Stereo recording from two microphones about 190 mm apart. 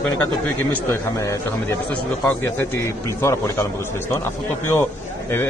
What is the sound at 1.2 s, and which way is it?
A man's voice, 15° left (ahead or behind).